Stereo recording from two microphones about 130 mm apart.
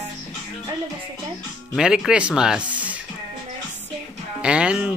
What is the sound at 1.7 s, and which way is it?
Speech, 5° right (ahead or behind).